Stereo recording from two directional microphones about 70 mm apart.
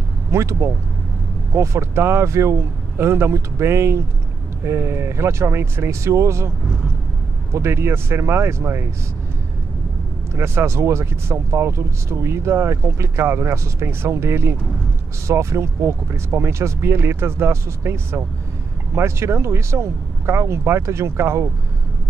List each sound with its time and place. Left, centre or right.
0.3 s speech: right
7.5 s speech: right
10.3 s speech: right